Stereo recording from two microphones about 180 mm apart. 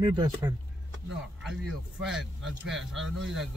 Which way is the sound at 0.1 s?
25° right (ahead or behind).